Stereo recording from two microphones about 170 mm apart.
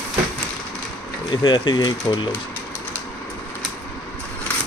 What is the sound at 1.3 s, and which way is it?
Speech, 25° left (ahead or behind).